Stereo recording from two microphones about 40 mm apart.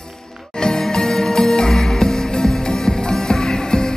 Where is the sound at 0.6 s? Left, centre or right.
Centre.